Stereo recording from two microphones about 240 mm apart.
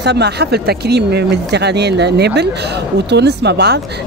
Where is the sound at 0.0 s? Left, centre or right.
Right.